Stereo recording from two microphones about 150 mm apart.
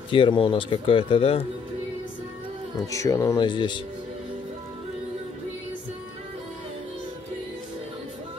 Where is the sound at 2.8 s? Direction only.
20° left (ahead or behind).